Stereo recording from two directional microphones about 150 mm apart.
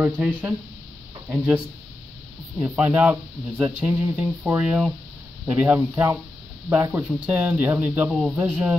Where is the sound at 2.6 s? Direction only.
10° right (ahead or behind).